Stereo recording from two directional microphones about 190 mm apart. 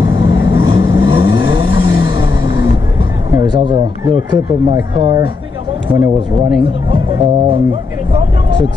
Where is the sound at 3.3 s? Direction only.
20° right (ahead or behind).